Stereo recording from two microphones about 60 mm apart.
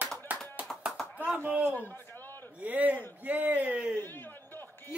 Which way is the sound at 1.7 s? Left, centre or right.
Left.